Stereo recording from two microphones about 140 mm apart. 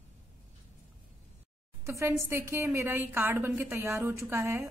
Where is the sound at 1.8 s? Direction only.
20° right (ahead or behind).